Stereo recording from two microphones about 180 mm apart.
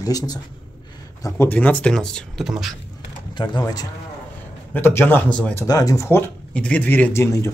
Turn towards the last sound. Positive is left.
turn(degrees=15)  # may be behind; listen again after turning